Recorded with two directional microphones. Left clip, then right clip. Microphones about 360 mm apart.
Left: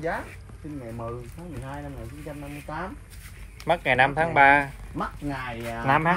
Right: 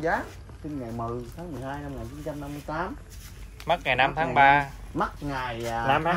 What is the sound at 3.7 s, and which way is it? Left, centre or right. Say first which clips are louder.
Speech: left 2 dB; centre.